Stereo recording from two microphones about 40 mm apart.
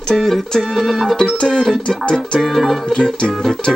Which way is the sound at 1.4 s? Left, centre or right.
Centre.